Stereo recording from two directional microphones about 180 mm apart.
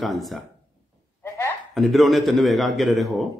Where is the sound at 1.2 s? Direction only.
15° left (ahead or behind).